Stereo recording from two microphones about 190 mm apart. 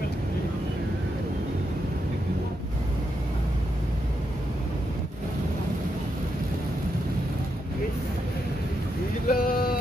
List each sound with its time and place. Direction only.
9.3 s vehicle: 50° left (ahead or behind)